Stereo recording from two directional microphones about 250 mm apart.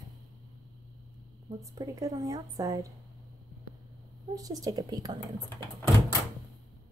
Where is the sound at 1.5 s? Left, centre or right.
Centre.